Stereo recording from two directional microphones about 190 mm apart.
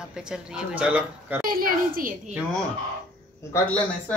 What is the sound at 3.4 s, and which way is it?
Speech, 15° left (ahead or behind).